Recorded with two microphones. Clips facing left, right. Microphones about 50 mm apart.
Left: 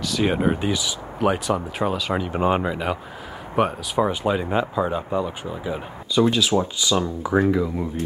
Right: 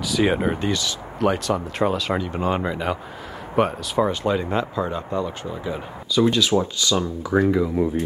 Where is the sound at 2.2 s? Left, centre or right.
Centre.